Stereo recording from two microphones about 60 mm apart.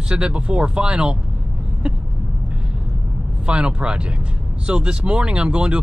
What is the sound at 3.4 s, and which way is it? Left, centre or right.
Speech, centre.